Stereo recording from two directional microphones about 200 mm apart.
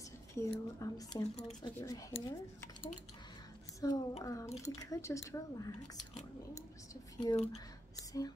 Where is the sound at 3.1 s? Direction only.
20° left (ahead or behind).